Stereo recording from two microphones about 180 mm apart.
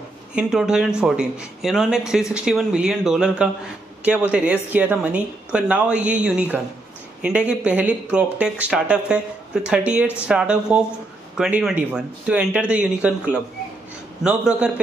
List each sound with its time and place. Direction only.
0.4 s a man's voice: 5° right (ahead or behind)